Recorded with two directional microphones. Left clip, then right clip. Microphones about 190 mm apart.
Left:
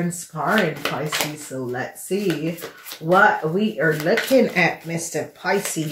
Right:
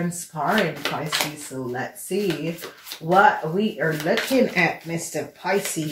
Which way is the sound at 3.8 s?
40° left (ahead or behind).